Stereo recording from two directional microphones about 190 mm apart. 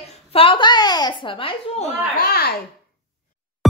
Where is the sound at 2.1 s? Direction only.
55° left (ahead or behind).